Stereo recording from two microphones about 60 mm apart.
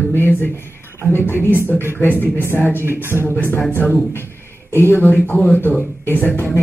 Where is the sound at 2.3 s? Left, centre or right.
Left.